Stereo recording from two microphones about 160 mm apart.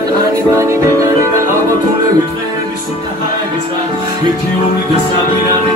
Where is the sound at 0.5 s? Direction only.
20° right (ahead or behind).